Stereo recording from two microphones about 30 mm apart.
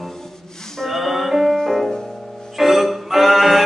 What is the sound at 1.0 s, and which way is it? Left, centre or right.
Music, centre.